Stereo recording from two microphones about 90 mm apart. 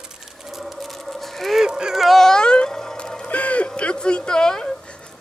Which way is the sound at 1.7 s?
10° right (ahead or behind).